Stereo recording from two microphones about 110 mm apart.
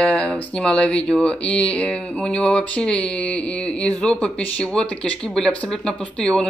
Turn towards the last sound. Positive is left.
turn(degrees=5)  # may be behind; listen again after turning